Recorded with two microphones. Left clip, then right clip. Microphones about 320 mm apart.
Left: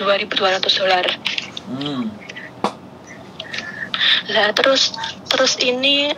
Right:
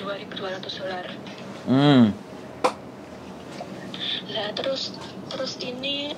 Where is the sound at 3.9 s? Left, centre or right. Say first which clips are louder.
Left 14 dB; left.